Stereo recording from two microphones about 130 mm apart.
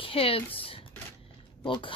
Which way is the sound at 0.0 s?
45° left (ahead or behind).